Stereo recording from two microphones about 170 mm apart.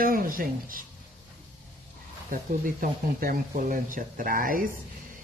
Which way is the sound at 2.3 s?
55° right (ahead or behind).